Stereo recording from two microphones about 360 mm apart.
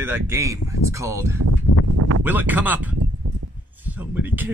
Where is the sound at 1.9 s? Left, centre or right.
Right.